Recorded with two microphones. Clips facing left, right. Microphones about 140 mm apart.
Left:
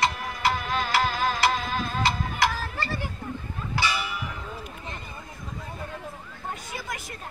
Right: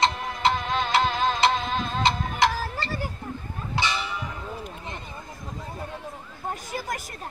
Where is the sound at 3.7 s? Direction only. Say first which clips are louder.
Even; 20° right (ahead or behind).